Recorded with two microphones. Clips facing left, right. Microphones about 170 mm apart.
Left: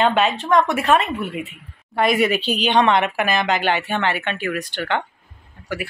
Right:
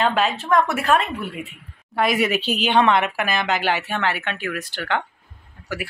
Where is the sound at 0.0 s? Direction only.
Centre (ahead or behind).